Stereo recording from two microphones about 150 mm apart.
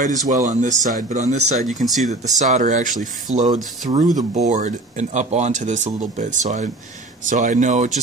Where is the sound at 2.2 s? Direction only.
55° right (ahead or behind).